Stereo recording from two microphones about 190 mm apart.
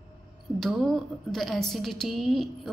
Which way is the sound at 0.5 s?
Centre (ahead or behind).